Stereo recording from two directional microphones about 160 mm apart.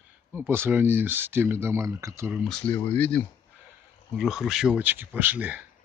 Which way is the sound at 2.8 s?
10° left (ahead or behind).